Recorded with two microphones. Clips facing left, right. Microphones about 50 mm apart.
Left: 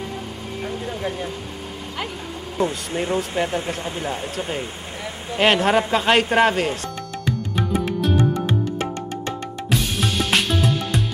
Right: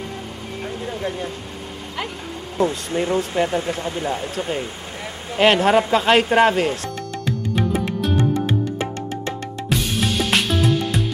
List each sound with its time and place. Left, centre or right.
0.6 s vehicle: centre
2.5 s speech: centre
7.5 s music: centre
9.7 s music: centre